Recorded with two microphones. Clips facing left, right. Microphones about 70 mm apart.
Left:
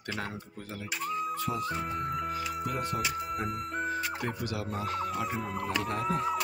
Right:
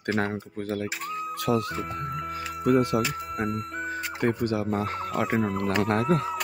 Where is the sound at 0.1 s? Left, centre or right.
Right.